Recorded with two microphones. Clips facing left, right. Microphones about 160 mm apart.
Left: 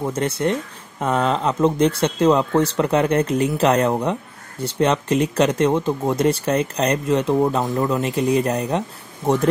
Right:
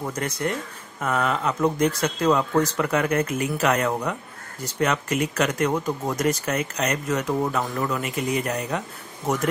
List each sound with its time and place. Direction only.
0.0 s speech: 25° left (ahead or behind)